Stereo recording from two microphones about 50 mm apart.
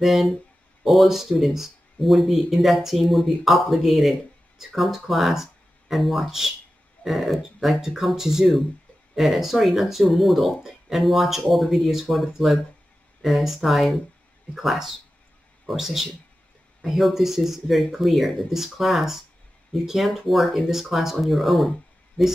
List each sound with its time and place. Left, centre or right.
0.0 s speech: centre